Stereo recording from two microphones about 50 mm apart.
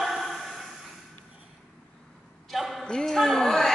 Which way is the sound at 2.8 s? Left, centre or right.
Centre.